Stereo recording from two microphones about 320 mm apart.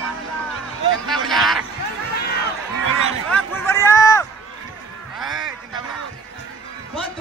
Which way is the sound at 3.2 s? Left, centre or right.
Centre.